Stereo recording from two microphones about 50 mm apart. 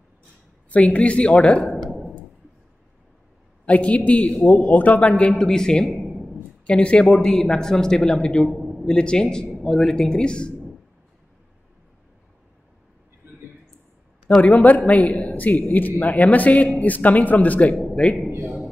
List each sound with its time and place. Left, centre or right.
0.7 s a woman's voice: left
3.6 s a woman's voice: left
5.4 s speech: centre
8.5 s a sound: centre
8.8 s speech: centre
14.4 s a man's voice: left